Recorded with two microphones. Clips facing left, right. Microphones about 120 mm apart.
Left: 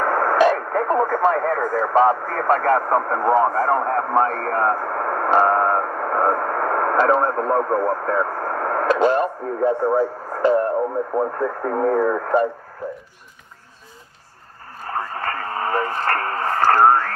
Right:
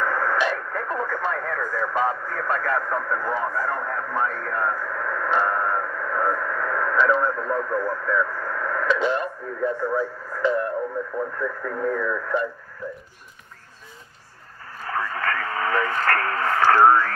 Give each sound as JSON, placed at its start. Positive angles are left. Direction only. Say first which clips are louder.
{"t": 0.0, "sound": "speech", "louder": "left 7 dB", "side_deg": 40}
{"t": 14.9, "sound": "radio", "louder": "even", "side_deg": 35}